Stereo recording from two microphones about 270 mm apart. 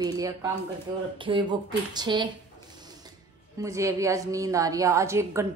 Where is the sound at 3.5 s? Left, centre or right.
Centre.